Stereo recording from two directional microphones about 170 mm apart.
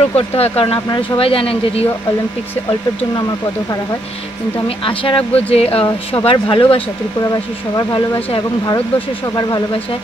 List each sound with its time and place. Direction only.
0.1 s speech: 35° left (ahead or behind)
4.6 s speech: 30° left (ahead or behind)